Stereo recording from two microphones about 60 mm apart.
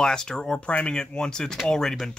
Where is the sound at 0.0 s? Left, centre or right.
Centre.